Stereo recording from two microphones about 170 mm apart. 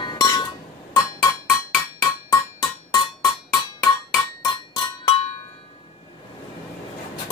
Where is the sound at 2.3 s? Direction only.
25° left (ahead or behind).